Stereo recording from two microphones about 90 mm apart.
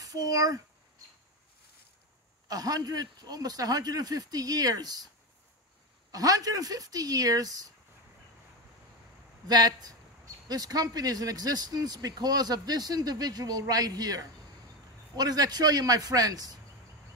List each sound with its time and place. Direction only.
0.0 s a sound: 45° right (ahead or behind)
2.4 s speech: 45° right (ahead or behind)
6.1 s speech: 45° right (ahead or behind)
9.5 s speech: 50° right (ahead or behind)